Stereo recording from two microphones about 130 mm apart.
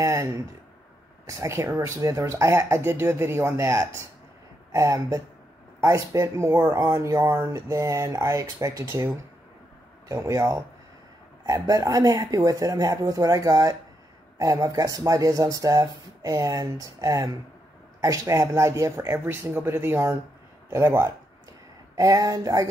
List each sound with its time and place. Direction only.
0.0 s speech: 20° right (ahead or behind)